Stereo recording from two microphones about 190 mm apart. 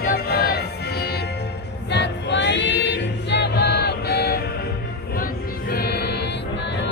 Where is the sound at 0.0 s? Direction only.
55° left (ahead or behind).